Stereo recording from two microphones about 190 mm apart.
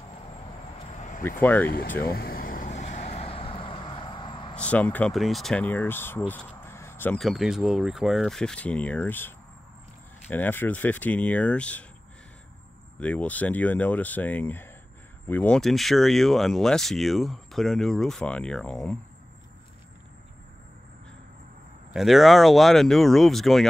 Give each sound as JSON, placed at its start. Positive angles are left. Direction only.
{"t": 1.4, "sound": "speech", "side_deg": 10}
{"t": 2.0, "sound": "vehicle", "side_deg": 55}
{"t": 4.6, "sound": "speech", "side_deg": 5}
{"t": 7.2, "sound": "speech", "side_deg": 0}
{"t": 13.0, "sound": "speech", "side_deg": 5}
{"t": 21.9, "sound": "speech", "side_deg": 0}